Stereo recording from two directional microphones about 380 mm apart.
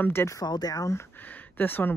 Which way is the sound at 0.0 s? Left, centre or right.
Centre.